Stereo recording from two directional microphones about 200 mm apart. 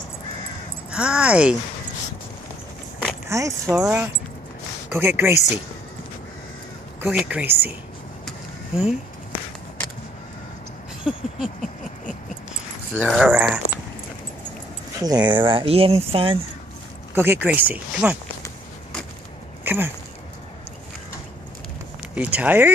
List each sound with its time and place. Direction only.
0.9 s speech: 5° right (ahead or behind)
3.3 s speech: 15° right (ahead or behind)
7.0 s speech: 5° right (ahead or behind)
8.3 s vehicle: 5° right (ahead or behind)
11.1 s speech: 5° right (ahead or behind)
12.9 s speech: 5° right (ahead or behind)
15.0 s speech: 20° right (ahead or behind)
17.1 s speech: 10° right (ahead or behind)
19.6 s a sound: 10° right (ahead or behind)
22.1 s speech: 5° right (ahead or behind)